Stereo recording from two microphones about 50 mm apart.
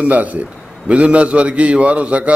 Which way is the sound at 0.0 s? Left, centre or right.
Right.